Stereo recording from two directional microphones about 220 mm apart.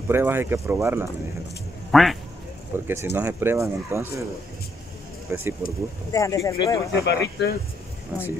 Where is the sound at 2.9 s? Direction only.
10° right (ahead or behind).